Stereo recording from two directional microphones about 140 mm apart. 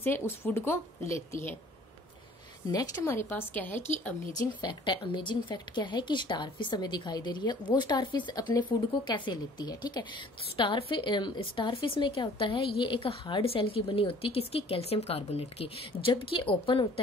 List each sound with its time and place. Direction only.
0.0 s a woman's voice: 15° left (ahead or behind)
2.7 s a woman's voice: 25° left (ahead or behind)
4.4 s a woman's voice: 30° left (ahead or behind)